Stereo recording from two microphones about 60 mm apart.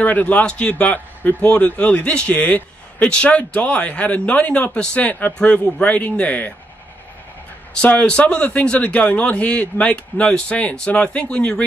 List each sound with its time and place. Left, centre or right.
0.0 s a man's voice: left
7.8 s a man's voice: centre